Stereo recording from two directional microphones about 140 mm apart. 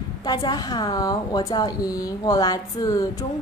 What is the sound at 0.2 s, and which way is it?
A woman's voice, 30° left (ahead or behind).